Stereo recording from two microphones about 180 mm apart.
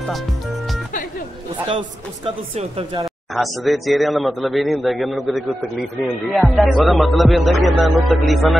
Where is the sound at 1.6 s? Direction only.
30° right (ahead or behind).